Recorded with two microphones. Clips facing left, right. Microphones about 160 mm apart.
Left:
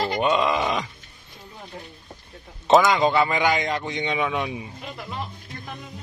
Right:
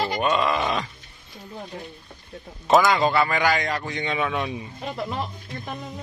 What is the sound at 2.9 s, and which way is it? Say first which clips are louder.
A man's voice: left 1 dB; 20° left (ahead or behind).